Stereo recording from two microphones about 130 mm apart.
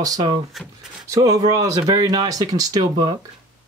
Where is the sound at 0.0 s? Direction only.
30° right (ahead or behind).